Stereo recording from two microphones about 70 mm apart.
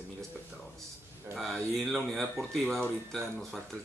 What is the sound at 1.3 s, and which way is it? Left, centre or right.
Speech, centre.